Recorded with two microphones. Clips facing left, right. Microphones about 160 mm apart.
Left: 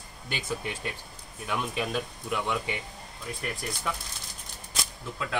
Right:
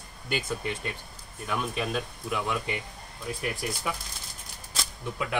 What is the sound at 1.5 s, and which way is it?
Speech, centre (ahead or behind).